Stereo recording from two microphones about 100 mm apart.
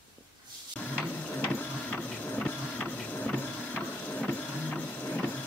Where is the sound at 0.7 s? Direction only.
15° left (ahead or behind).